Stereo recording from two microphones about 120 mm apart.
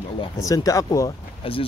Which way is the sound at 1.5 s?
50° left (ahead or behind).